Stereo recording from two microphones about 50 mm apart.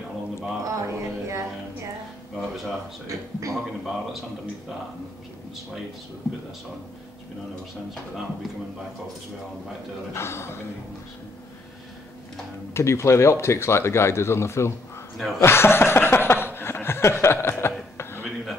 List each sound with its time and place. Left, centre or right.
0.7 s a sound: right
2.3 s music: centre
3.1 s a man's voice: right
3.8 s a man's voice: centre
10.1 s speech: left
12.7 s speech: left
15.1 s a man's voice: centre
15.4 s chuckle: left